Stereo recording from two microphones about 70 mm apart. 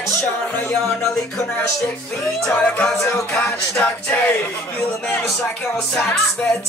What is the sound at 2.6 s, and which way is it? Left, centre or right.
Music, left.